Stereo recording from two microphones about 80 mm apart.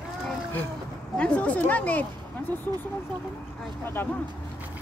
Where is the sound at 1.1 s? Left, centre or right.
Centre.